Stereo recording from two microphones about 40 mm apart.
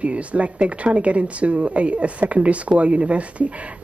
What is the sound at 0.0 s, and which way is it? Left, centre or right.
Speech, right.